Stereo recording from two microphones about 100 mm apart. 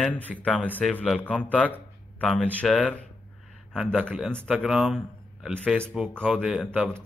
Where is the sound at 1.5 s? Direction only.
15° left (ahead or behind).